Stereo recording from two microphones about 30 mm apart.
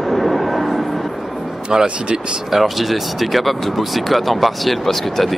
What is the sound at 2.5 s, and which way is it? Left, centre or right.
Speech, centre.